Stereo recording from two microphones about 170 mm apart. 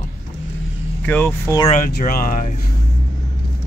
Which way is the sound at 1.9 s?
60° left (ahead or behind).